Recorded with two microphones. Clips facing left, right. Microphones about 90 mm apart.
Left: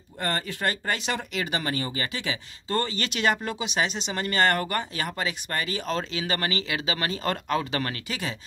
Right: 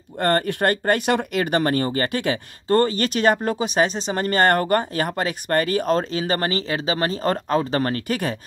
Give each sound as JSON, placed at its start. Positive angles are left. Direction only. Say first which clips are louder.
{"t": 0.2, "sound": "speech", "louder": "right 9 dB", "side_deg": -55}